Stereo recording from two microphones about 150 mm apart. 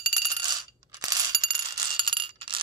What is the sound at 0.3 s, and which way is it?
Coin, 25° right (ahead or behind).